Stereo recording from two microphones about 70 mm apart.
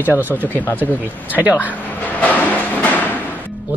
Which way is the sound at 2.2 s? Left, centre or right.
Left.